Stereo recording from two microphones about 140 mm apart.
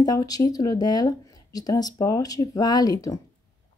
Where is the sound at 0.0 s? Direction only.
25° left (ahead or behind).